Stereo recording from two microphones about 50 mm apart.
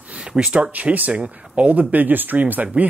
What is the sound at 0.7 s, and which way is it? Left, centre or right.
Speech, right.